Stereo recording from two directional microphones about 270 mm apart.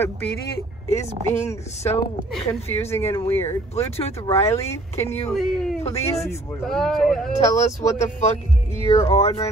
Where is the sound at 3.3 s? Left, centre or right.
Centre.